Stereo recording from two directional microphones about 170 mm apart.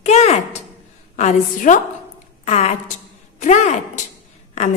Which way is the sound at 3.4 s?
45° left (ahead or behind).